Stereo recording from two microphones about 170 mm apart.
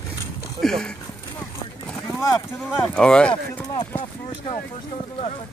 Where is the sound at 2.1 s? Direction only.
15° left (ahead or behind).